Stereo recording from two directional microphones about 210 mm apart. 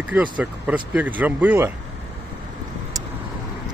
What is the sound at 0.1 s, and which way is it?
Speech, 5° right (ahead or behind).